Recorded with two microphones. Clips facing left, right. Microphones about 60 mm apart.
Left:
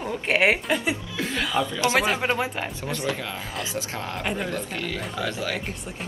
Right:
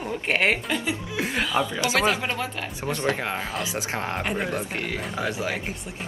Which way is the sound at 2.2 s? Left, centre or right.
Left.